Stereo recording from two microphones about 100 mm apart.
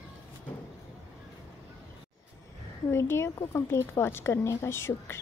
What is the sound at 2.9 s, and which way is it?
A woman's voice, 25° left (ahead or behind).